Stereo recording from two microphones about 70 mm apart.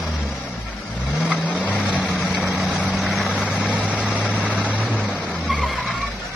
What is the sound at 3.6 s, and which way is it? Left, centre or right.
Vehicle, right.